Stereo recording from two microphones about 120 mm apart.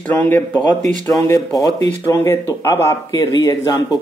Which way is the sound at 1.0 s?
25° left (ahead or behind).